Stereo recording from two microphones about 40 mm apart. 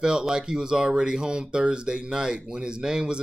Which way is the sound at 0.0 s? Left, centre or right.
Centre.